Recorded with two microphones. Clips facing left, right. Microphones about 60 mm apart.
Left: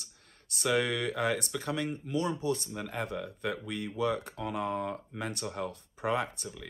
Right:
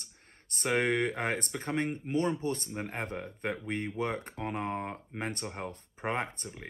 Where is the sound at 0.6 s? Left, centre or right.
Right.